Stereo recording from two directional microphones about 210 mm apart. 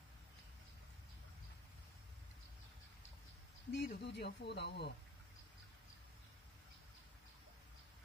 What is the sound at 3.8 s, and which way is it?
Speech, 50° left (ahead or behind).